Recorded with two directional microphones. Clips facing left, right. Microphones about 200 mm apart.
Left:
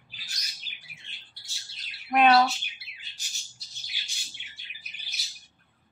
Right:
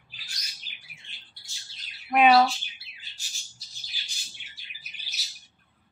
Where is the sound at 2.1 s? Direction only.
5° right (ahead or behind).